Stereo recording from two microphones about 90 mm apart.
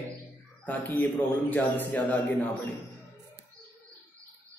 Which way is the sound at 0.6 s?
20° left (ahead or behind).